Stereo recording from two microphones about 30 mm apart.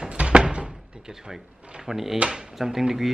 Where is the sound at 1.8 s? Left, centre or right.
Centre.